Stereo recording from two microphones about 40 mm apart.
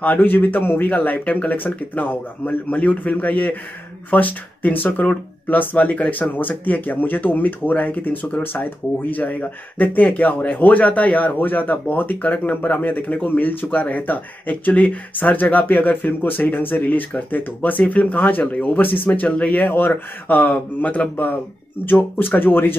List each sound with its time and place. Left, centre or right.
0.0 s speech: left
19.2 s speech: left
19.5 s speech: left
21.8 s speech: left